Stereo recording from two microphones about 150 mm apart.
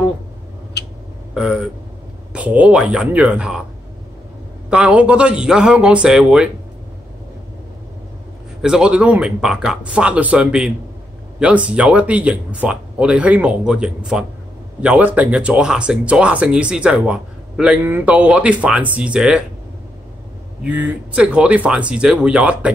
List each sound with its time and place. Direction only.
0.8 s a sound: 90° left
1.3 s speech: 5° right (ahead or behind)
4.6 s speech: 5° right (ahead or behind)
8.6 s speech: 5° right (ahead or behind)
20.6 s speech: 10° right (ahead or behind)